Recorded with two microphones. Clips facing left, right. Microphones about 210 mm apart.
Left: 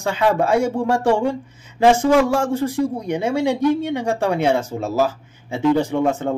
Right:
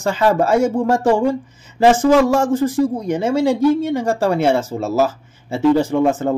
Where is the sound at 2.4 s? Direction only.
80° right.